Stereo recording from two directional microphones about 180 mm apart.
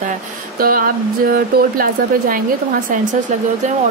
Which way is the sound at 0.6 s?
55° right (ahead or behind).